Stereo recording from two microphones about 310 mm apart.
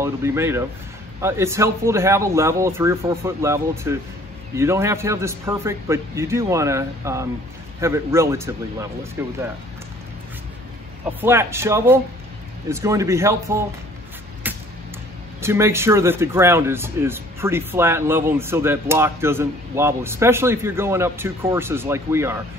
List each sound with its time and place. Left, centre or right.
0.0 s speech: centre
11.1 s speech: centre
14.4 s music: centre
15.4 s speech: centre